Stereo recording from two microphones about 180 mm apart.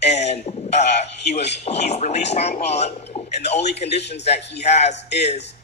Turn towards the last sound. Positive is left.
turn(degrees=40)  # may be behind; listen again after turning